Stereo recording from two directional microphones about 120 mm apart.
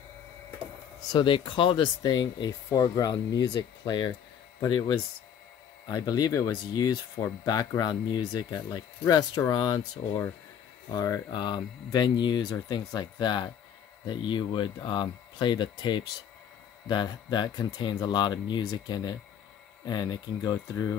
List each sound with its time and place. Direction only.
1.1 s speech: 45° left (ahead or behind)